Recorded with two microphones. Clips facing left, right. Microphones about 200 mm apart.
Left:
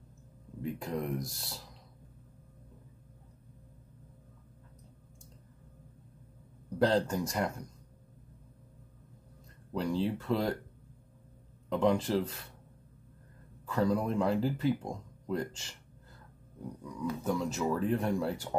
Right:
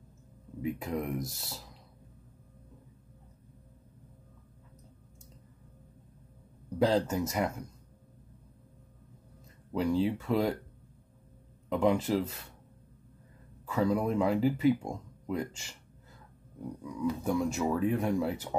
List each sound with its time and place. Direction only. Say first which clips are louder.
0.6 s speech: right 2 dB; 5° right (ahead or behind)
6.8 s speech: right 1 dB; 5° right (ahead or behind)
9.7 s speech: right 3 dB; 10° right (ahead or behind)
11.7 s speech: right 1 dB; 5° right (ahead or behind)
13.7 s speech: right 1 dB; 5° right (ahead or behind)
16.8 s speech: right 2 dB; 10° right (ahead or behind)